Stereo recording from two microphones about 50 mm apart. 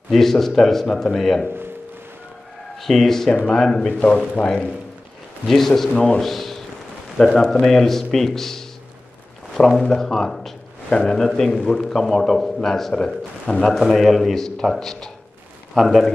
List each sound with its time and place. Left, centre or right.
0.1 s a man's voice: centre
2.8 s a man's voice: centre
3.9 s a man's voice: left
5.5 s a man's voice: centre
6.2 s a sound: centre
7.3 s a man's voice: centre
13.7 s a man's voice: centre